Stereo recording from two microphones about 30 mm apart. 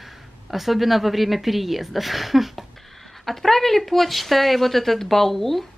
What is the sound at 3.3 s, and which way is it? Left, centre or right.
Speech, centre.